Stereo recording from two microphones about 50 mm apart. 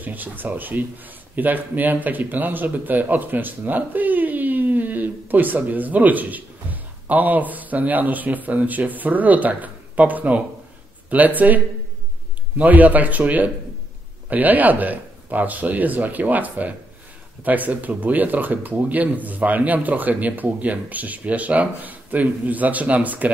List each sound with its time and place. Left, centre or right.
0.0 s speech: right